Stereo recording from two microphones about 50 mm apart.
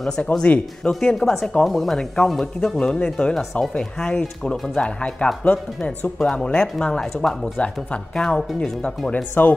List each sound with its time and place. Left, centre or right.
0.3 s speech: centre
2.8 s speech: left
9.3 s speech: left